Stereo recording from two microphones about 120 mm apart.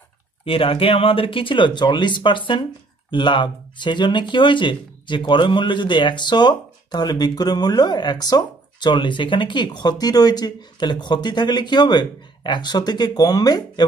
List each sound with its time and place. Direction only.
0.5 s speech: 50° left (ahead or behind); by 13.8 s 35° left (ahead or behind)